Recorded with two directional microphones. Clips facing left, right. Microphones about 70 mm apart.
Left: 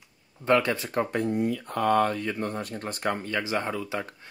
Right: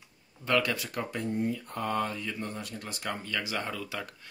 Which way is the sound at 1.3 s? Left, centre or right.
Left.